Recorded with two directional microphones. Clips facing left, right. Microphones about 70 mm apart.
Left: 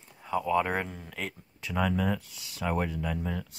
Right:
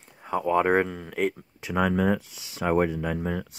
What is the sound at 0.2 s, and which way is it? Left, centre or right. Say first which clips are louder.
Speech: right 4 dB; right.